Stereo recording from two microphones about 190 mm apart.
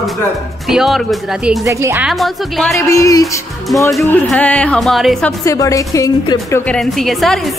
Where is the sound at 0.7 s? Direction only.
Centre (ahead or behind).